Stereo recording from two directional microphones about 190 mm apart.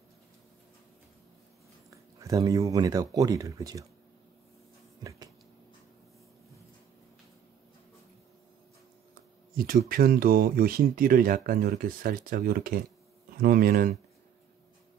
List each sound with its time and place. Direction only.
1.9 s speech: 20° right (ahead or behind)
9.1 s speech: 50° right (ahead or behind)